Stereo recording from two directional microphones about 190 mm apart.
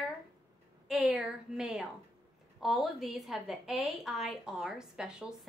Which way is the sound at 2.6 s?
Centre (ahead or behind).